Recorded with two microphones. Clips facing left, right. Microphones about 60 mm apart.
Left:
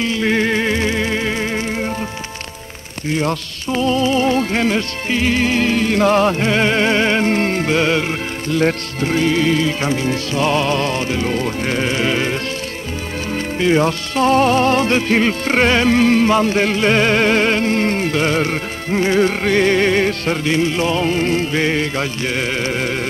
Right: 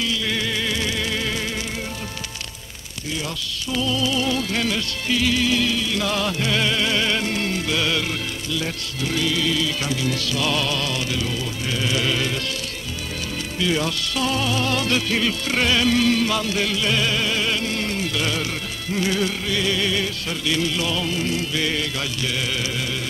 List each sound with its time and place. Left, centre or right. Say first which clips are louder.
0.0 s music: left 8 dB; left
3.1 s music: left 9 dB; left
13.6 s music: left 7 dB; left
20.5 s music: left 5 dB; left